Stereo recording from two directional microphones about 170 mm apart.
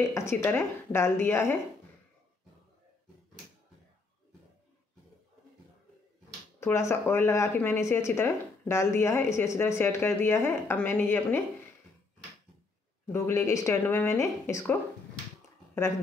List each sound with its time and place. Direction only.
0.1 s speech: 15° left (ahead or behind)
6.6 s speech: 15° left (ahead or behind)
13.0 s speech: 15° left (ahead or behind)